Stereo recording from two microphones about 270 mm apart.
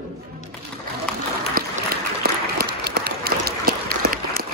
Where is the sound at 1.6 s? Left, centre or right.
Right.